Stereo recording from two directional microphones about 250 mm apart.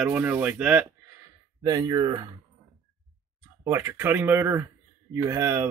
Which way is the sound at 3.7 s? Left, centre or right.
Centre.